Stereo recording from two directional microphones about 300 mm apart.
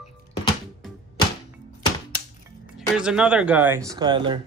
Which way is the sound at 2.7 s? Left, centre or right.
Centre.